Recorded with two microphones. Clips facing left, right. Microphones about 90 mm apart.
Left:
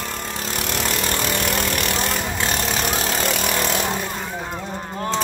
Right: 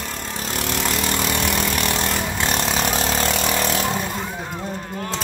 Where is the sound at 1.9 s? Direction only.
Centre (ahead or behind).